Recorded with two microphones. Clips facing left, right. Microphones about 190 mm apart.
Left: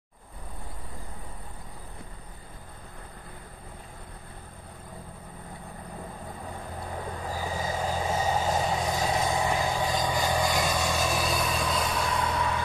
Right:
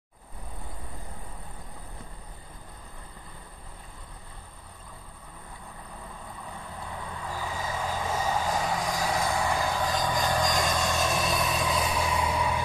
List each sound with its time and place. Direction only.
7.2 s vehicle: 35° left (ahead or behind); by 12.6 s 10° right (ahead or behind)